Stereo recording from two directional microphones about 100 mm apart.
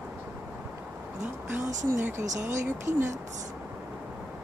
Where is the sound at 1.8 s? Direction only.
25° right (ahead or behind).